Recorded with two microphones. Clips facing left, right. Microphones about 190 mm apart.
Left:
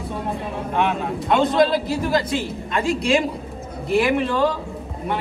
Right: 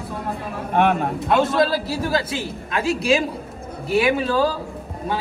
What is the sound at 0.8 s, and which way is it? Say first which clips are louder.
Speech: right 4 dB; 55° right (ahead or behind).